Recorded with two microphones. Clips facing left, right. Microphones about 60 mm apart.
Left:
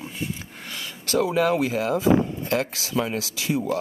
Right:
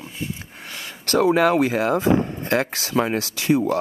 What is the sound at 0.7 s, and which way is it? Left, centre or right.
Speech, right.